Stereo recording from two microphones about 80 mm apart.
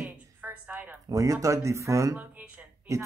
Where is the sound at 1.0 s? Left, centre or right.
Right.